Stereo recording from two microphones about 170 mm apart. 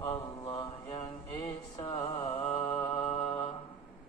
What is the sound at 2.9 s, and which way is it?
Mantra, 35° left (ahead or behind).